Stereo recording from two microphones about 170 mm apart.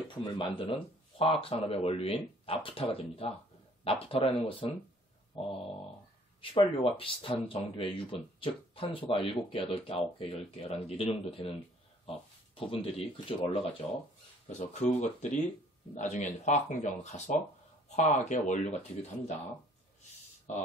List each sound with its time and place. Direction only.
0.1 s speech: 30° left (ahead or behind)
5.4 s mantra: 35° left (ahead or behind)
6.4 s speech: 30° left (ahead or behind)
12.5 s speech: 35° left (ahead or behind)
14.7 s speech: 45° left (ahead or behind)